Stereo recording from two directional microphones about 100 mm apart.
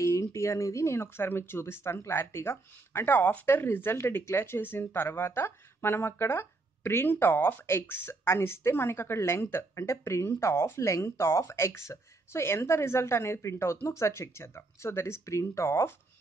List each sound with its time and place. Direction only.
0.0 s speech: 30° left (ahead or behind)